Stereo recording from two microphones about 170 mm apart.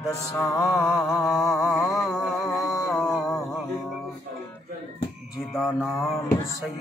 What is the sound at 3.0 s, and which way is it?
Music, centre (ahead or behind).